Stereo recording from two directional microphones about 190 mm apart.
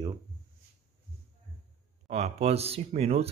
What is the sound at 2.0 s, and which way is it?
Speech, 35° right (ahead or behind).